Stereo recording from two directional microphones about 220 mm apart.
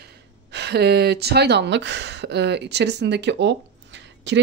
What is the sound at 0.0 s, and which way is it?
Speech, 50° right (ahead or behind).